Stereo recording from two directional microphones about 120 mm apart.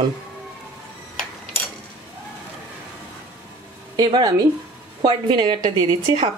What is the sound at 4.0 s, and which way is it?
A woman's voice, 35° right (ahead or behind).